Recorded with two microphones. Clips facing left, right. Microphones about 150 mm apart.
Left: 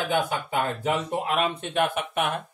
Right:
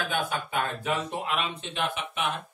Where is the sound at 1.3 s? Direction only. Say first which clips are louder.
Left 6 dB; 50° left (ahead or behind).